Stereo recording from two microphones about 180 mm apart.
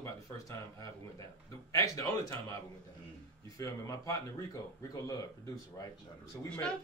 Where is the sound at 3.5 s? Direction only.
15° left (ahead or behind).